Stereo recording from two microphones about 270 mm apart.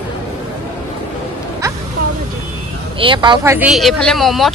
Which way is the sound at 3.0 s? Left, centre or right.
Centre.